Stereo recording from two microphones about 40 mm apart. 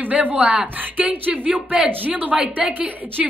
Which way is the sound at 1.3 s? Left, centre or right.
Right.